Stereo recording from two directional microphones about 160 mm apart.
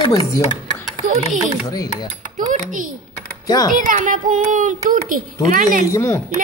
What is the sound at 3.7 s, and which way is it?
Speech, 55° right (ahead or behind).